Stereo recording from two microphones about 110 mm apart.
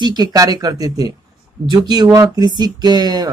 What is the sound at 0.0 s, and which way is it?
Speech, 40° right (ahead or behind).